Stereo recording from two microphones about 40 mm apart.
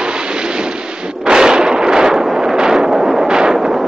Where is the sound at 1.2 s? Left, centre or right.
Centre.